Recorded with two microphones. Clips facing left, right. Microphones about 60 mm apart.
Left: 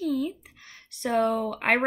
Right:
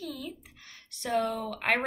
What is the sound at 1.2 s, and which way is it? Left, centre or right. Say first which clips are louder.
Speech: left 7 dB; left.